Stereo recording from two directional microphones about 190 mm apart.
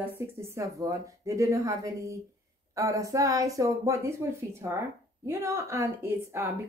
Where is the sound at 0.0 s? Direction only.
15° right (ahead or behind).